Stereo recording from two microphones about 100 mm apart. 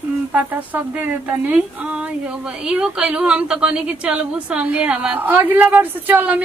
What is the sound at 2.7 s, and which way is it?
A woman's voice, 10° right (ahead or behind).